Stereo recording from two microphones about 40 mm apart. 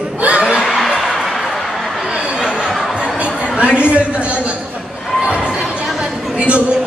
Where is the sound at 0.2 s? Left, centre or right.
Right.